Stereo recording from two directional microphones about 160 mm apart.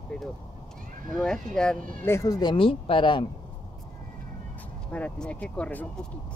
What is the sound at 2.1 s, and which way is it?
Speech, 20° left (ahead or behind).